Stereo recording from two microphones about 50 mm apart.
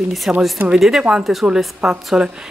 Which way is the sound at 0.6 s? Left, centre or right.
Right.